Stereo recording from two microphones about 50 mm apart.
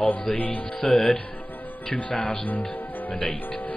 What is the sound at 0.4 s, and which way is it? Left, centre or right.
Speech, left.